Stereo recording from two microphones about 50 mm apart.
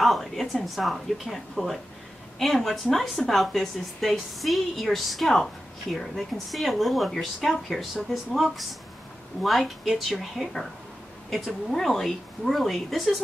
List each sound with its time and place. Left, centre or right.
0.0 s a woman's voice: centre